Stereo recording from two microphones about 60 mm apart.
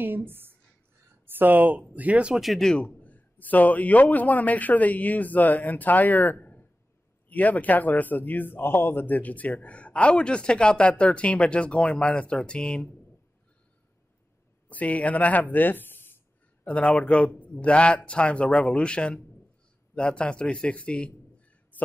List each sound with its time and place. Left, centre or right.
0.0 s speech: right
2.3 s speech: centre
2.8 s speech: left
14.7 s speech: left
16.6 s speech: left